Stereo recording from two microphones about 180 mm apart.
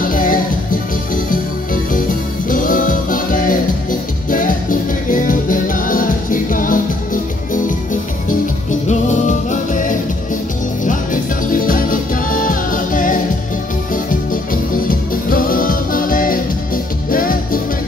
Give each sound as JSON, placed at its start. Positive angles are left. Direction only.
{"t": 0.0, "sound": "music", "side_deg": 50}
{"t": 8.8, "sound": "music", "side_deg": 40}
{"t": 11.5, "sound": "music", "side_deg": 50}
{"t": 14.3, "sound": "music", "side_deg": 50}